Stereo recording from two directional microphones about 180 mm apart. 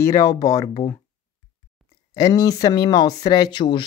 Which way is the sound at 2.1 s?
20° left (ahead or behind).